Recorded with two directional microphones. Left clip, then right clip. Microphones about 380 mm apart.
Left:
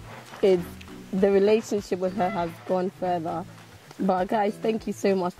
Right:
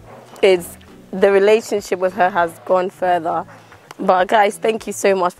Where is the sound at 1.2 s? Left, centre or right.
Centre.